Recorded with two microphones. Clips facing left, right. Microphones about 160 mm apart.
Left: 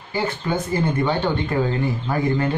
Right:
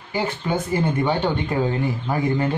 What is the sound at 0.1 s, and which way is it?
Speech, 15° right (ahead or behind).